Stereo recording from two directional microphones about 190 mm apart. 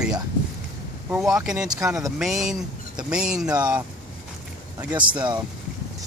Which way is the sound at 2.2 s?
Centre (ahead or behind).